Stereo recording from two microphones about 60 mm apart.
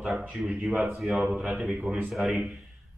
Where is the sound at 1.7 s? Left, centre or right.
Right.